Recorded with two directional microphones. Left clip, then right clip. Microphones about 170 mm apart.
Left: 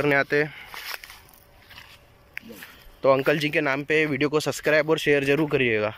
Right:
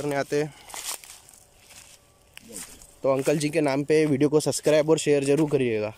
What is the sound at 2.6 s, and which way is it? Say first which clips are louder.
Speech: left 3 dB; 20° right (ahead or behind).